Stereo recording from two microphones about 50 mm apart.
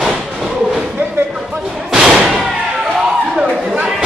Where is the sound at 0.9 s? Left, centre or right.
Right.